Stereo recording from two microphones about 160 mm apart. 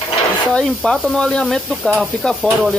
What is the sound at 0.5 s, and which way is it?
Speech, 5° left (ahead or behind).